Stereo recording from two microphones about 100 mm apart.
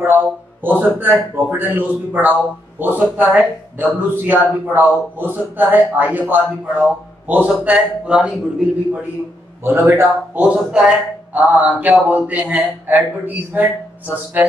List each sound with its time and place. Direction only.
0.0 s speech: 20° right (ahead or behind)
9.6 s speech: 20° right (ahead or behind)